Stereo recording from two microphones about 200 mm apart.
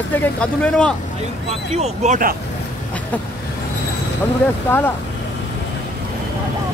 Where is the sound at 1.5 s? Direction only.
35° right (ahead or behind).